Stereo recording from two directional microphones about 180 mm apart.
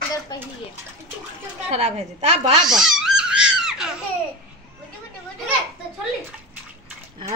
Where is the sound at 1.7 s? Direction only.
40° right (ahead or behind).